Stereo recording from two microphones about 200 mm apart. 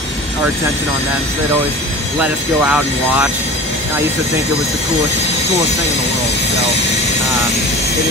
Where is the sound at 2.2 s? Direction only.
5° right (ahead or behind).